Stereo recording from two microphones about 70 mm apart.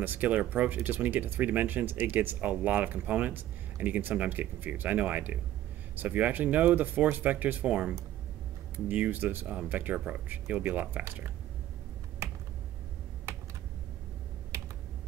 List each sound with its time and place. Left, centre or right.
0.0 s speech: right